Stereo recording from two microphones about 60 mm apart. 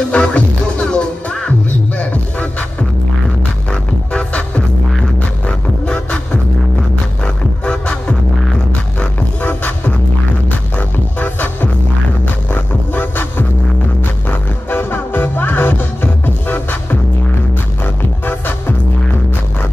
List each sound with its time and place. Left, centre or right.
0.1 s music: centre
4.1 s music: left
7.6 s music: centre
9.4 s music: left
11.1 s music: left
14.7 s music: left